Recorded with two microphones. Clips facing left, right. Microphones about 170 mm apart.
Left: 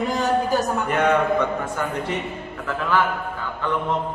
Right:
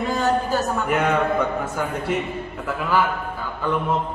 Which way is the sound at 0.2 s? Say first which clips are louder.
Even; 15° left (ahead or behind).